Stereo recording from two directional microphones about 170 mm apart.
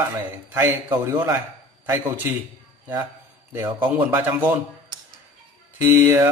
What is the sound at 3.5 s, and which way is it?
Speech, 10° right (ahead or behind).